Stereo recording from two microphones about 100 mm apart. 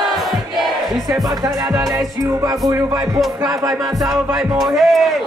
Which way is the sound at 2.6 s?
30° right (ahead or behind).